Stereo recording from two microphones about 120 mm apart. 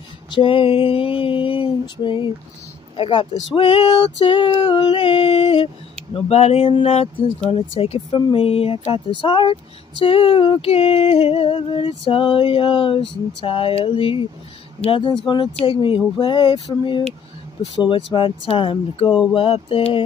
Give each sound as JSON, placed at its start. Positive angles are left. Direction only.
{"t": 0.3, "sound": "speech", "side_deg": 45}